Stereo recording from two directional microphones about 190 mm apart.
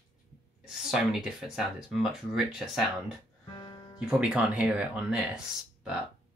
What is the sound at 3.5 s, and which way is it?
Music, 20° left (ahead or behind).